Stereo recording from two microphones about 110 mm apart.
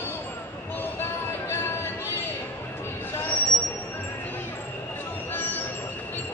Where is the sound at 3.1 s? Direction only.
20° left (ahead or behind).